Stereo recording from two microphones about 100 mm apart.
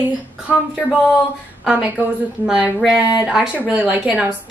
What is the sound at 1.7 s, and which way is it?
Speech, 10° right (ahead or behind).